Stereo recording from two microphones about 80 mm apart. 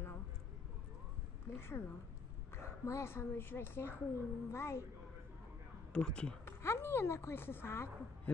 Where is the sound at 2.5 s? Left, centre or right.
Left.